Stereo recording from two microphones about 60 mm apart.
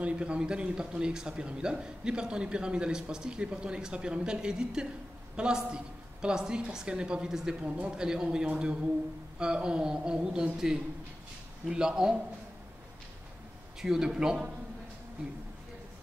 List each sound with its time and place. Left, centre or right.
0.0 s a man's voice: centre
13.7 s speech: centre